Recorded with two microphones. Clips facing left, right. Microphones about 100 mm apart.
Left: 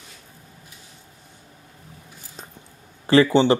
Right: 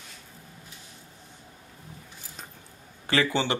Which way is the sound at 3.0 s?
30° left (ahead or behind).